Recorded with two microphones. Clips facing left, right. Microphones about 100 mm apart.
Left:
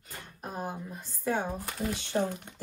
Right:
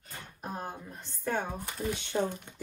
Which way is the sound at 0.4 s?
5° left (ahead or behind).